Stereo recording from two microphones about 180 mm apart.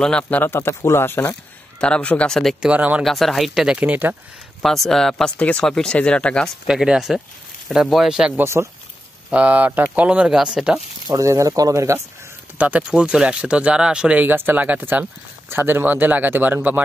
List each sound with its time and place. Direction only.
0.0 s speech: 5° left (ahead or behind)
11.1 s speech: 15° right (ahead or behind)